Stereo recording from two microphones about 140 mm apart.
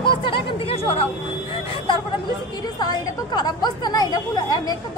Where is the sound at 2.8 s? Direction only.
30° left (ahead or behind).